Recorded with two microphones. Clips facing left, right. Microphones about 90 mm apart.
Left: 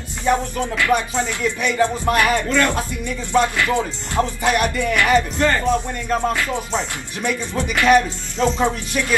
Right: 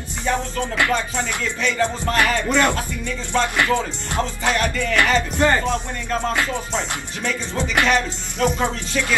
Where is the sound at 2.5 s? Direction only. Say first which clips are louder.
Even; 20° right (ahead or behind).